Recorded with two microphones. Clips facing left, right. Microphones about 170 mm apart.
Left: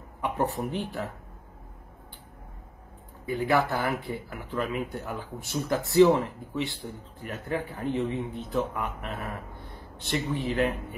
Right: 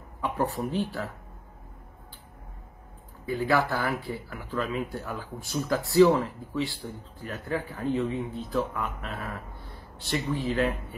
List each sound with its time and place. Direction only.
0.2 s a sound: 20° left (ahead or behind)
0.7 s speech: 20° left (ahead or behind)
3.3 s speech: 20° left (ahead or behind)